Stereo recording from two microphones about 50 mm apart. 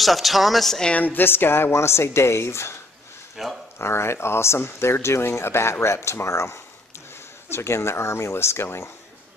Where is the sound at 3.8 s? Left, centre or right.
Left.